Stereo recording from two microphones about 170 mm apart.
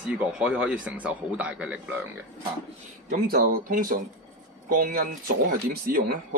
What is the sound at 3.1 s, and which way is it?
A man's voice, 55° right (ahead or behind).